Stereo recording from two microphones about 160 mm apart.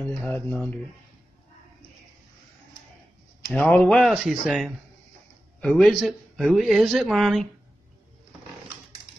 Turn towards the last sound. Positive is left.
turn(degrees=0)  # may be behind; listen again after turning